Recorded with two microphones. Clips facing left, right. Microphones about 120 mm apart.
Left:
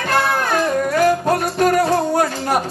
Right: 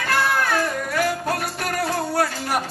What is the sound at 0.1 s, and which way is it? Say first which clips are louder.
Music: left 3 dB; 20° left (ahead or behind).